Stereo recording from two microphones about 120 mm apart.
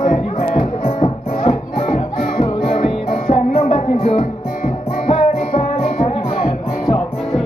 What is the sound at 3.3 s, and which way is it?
Music, 60° left (ahead or behind).